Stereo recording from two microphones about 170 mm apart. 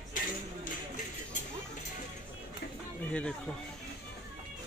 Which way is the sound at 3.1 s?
5° left (ahead or behind).